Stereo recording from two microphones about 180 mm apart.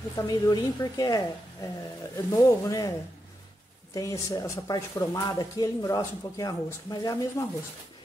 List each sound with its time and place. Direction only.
0.1 s speech: 20° left (ahead or behind)
3.9 s speech: 20° left (ahead or behind)